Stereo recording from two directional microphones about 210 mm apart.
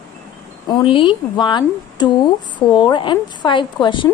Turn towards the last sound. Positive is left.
turn(degrees=20)  # may be behind; listen again after turning